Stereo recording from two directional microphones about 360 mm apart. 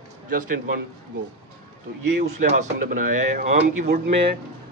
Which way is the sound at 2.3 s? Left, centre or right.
Right.